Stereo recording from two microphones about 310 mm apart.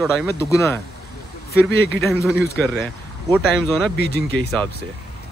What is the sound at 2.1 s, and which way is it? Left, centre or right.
Speech, centre.